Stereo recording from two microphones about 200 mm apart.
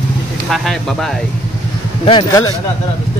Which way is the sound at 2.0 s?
25° left (ahead or behind).